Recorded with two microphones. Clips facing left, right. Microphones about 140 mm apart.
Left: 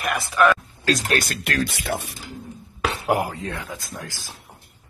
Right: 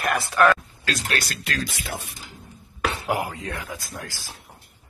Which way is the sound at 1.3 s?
65° left (ahead or behind).